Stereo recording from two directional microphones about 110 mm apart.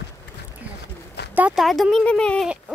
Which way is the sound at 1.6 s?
Centre (ahead or behind).